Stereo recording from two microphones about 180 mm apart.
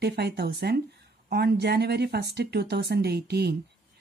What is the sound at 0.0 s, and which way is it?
Speech, 65° right (ahead or behind).